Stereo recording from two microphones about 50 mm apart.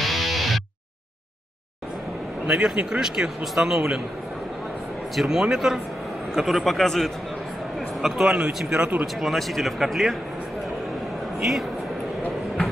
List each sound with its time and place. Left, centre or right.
0.0 s music: centre
2.5 s speech: centre
3.0 s speech: centre
5.1 s speech: centre
8.0 s speech: centre
9.0 s speech: centre